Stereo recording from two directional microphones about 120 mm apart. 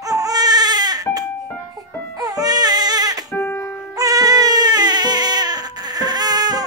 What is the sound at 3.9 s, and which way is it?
Baby cry, 30° right (ahead or behind).